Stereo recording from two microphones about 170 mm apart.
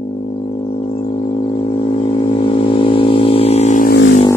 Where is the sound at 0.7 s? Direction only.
35° left (ahead or behind).